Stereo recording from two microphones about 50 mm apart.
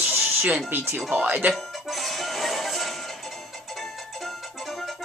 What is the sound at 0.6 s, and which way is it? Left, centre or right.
Speech, right.